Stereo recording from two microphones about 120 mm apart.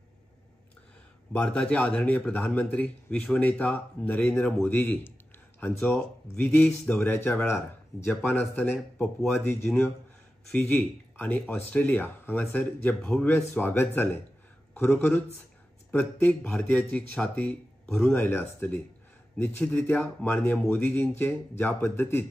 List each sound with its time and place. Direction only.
1.3 s speech: 10° left (ahead or behind)
8.7 s speech: 5° left (ahead or behind)
10.5 s a man's voice: 10° left (ahead or behind)
20.0 s speech: 10° left (ahead or behind)